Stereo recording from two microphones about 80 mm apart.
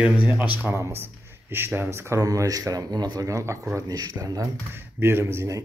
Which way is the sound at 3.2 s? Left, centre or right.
Right.